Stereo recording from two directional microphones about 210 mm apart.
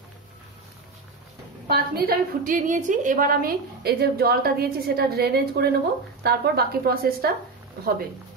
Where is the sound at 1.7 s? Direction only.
45° right (ahead or behind).